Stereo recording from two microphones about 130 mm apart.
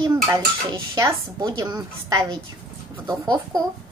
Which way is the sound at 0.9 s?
30° right (ahead or behind).